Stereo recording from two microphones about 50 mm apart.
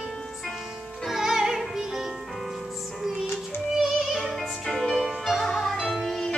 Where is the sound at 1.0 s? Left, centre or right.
Centre.